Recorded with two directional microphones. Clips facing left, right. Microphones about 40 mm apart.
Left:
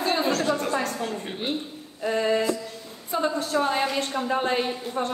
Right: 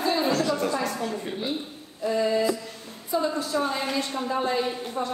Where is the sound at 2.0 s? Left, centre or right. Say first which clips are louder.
Even; left.